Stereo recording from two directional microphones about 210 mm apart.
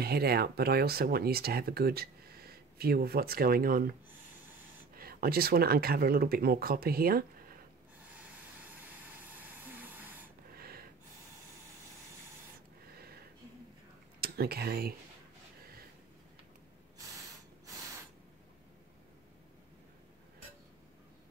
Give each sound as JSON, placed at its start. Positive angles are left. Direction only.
{"t": 0.0, "sound": "speech", "side_deg": -50}
{"t": 4.9, "sound": "speech", "side_deg": -45}
{"t": 8.6, "sound": "a sound", "side_deg": -10}
{"t": 10.5, "sound": "gasp", "side_deg": -45}
{"t": 12.9, "sound": "a sound", "side_deg": -45}
{"t": 14.2, "sound": "speech", "side_deg": -50}